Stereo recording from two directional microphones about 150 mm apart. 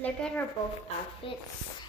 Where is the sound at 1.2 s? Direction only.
35° left (ahead or behind).